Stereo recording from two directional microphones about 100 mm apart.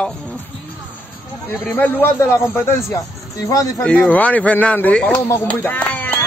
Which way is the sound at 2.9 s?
35° left (ahead or behind).